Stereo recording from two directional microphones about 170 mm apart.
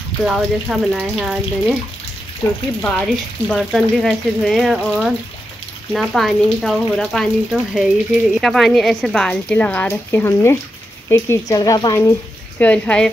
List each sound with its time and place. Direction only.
0.2 s speech: 5° right (ahead or behind)
3.4 s speech: centre (ahead or behind)